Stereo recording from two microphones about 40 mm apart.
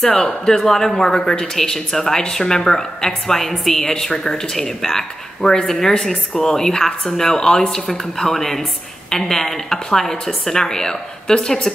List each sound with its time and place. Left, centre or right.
0.5 s speech: centre